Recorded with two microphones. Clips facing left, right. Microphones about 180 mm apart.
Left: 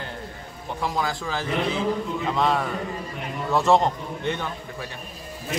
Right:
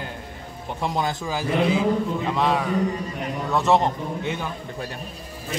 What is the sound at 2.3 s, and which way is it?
A man's voice, centre (ahead or behind).